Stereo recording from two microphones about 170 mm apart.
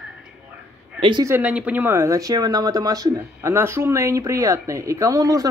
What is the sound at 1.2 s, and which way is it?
Speech, 10° right (ahead or behind).